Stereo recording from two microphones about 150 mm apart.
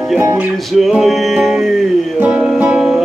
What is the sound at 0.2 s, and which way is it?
Music, 20° right (ahead or behind).